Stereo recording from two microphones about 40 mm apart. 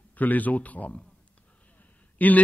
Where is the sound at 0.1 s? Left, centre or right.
Left.